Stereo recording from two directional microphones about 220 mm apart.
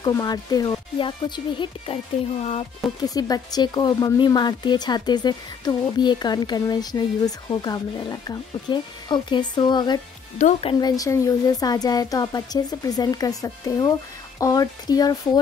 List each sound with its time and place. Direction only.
0.0 s speech: 15° left (ahead or behind)
3.1 s speech: 15° left (ahead or behind)